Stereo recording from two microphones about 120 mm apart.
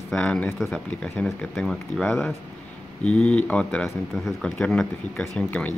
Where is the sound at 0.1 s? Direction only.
10° left (ahead or behind).